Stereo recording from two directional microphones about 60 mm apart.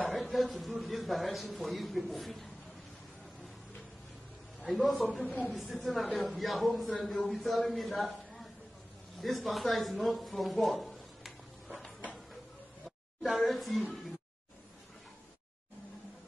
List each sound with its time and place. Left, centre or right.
0.1 s a man's voice: centre
4.7 s a man's voice: centre
5.2 s a woman's voice: left
5.5 s a man's voice: centre
13.2 s a man's voice: centre